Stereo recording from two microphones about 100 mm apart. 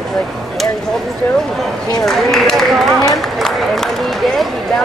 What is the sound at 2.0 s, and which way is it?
Speech, 5° left (ahead or behind).